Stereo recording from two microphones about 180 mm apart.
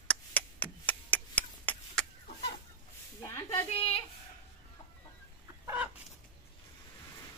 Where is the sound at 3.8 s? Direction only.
30° left (ahead or behind).